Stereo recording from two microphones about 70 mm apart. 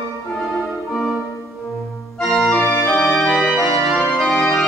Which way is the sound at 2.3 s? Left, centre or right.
Centre.